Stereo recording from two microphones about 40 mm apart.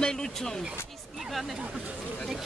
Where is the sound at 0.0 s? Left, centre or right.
Centre.